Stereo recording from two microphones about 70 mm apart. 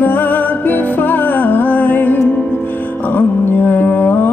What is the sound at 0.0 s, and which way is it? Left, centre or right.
Music, left.